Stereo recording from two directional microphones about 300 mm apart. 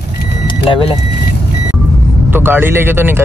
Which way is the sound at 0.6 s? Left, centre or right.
Centre.